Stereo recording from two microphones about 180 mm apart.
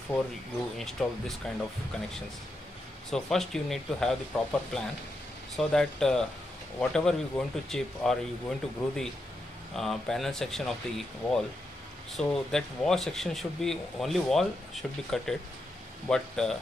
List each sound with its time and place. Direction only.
0.7 s speech: centre (ahead or behind)
3.1 s speech: centre (ahead or behind)
12.1 s speech: centre (ahead or behind)